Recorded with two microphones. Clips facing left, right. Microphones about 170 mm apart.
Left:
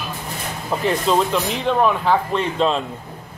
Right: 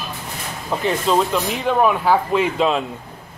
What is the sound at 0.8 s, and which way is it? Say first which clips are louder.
Speech: even; centre (ahead or behind).